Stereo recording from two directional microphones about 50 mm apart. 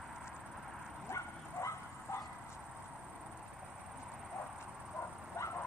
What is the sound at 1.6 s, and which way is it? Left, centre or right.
Bow-wow, left.